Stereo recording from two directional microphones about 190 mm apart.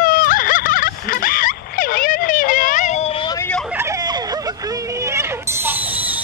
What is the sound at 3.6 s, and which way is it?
Hubbub, 15° right (ahead or behind).